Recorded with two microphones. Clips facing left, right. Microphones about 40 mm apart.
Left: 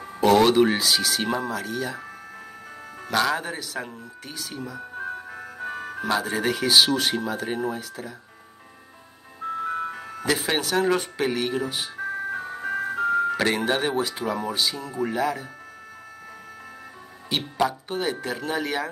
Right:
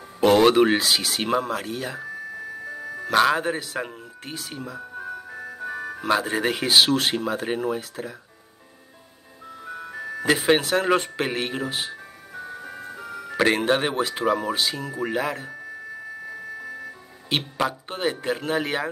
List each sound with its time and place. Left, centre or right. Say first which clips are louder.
0.2 s speech: right 1 dB; right
3.1 s speech: right 4 dB; right
5.6 s music: right 1 dB; left
6.0 s speech: right 2 dB; right
9.5 s ice cream truck: left 8 dB; left
10.2 s speech: right 5 dB; right
12.0 s ice cream truck: left 10 dB; left
13.7 s speech: right 2 dB; right
14.5 s speech: right 1 dB; right
17.6 s speech: even; right